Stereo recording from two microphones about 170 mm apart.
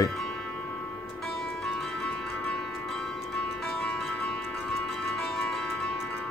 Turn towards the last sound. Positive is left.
turn(degrees=5)  # may be behind; listen again after turning